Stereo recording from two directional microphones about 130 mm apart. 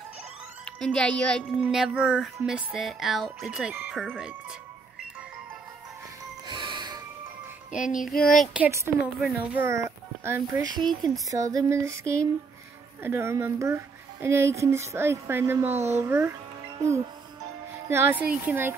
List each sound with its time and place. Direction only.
0.7 s speech: 5° left (ahead or behind)
1.6 s speech: 5° right (ahead or behind)
6.4 s music: 35° right (ahead or behind)
7.7 s music: 85° left
8.2 s speech: 5° left (ahead or behind)
8.5 s speech: 20° right (ahead or behind)
17.8 s speech: 20° right (ahead or behind)